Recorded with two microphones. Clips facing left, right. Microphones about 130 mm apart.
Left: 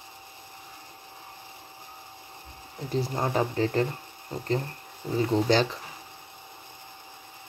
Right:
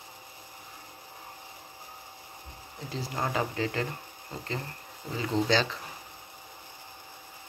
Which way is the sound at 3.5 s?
35° left (ahead or behind).